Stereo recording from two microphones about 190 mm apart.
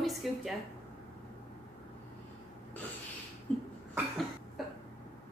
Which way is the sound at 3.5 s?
10° left (ahead or behind).